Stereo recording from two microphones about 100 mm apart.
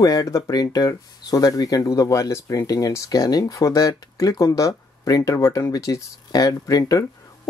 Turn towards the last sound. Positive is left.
turn(degrees=35)  # may be behind; listen again after turning